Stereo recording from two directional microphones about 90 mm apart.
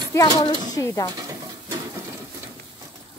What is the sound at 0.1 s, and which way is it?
Speech, 40° left (ahead or behind).